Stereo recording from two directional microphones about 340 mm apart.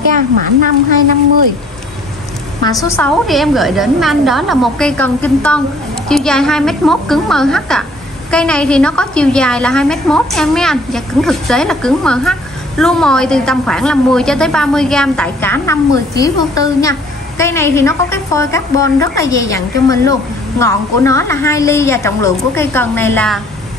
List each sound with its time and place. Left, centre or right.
0.1 s a woman's voice: right
2.8 s a woman's voice: centre